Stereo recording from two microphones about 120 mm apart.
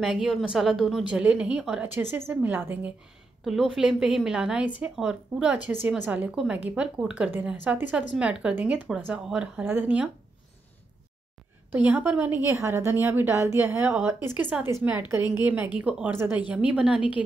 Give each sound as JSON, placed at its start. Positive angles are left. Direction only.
{"t": 0.0, "sound": "a woman's voice", "side_deg": 0}
{"t": 1.9, "sound": "a woman's voice", "side_deg": -20}
{"t": 3.4, "sound": "a woman's voice", "side_deg": -5}
{"t": 11.7, "sound": "a woman's voice", "side_deg": -15}